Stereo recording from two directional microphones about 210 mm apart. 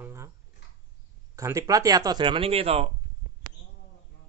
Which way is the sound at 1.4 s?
15° right (ahead or behind).